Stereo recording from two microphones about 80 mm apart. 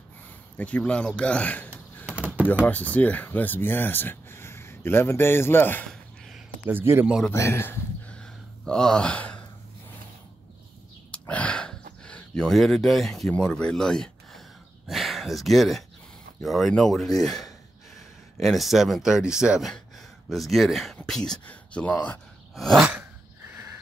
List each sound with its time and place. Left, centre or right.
0.6 s speech: centre
2.0 s a sound: centre
2.6 s speech: left
5.9 s a sound: centre
6.7 s speech: right
7.3 s speech: left
8.1 s gasp: centre
11.1 s gasp: centre
13.3 s speech: centre
19.6 s speech: centre
22.6 s speech: centre